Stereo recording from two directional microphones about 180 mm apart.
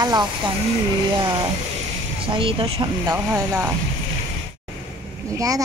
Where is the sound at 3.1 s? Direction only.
15° right (ahead or behind).